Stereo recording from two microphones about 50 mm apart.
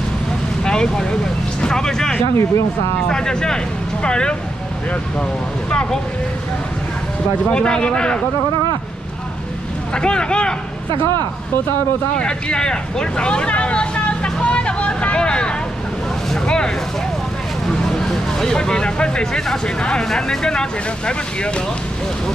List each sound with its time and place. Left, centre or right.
0.7 s vehicle: centre
1.6 s speech: centre
2.3 s speech: left
3.0 s speech: centre
5.7 s speech: centre
7.4 s speech: centre
9.9 s speech: centre
12.2 s vehicle: centre
16.4 s a sound: centre
19.8 s speech: centre